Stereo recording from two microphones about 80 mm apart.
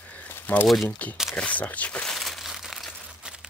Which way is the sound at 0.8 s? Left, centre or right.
Centre.